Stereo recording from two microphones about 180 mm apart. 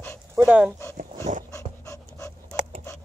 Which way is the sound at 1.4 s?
15° left (ahead or behind).